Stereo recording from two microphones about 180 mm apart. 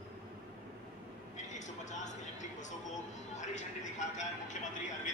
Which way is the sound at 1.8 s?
40° left (ahead or behind).